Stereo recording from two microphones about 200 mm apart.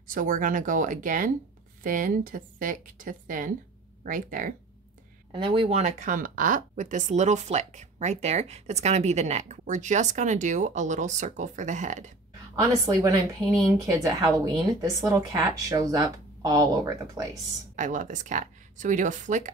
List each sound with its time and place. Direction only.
0.1 s speech: 40° right (ahead or behind)
5.3 s speech: 25° right (ahead or behind)
12.5 s speech: 15° right (ahead or behind)
17.7 s speech: 40° right (ahead or behind)